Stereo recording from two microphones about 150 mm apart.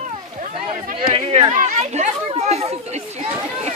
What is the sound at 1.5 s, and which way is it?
Chatter, 50° right (ahead or behind).